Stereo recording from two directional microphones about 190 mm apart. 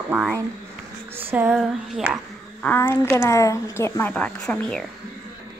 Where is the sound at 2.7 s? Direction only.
10° left (ahead or behind).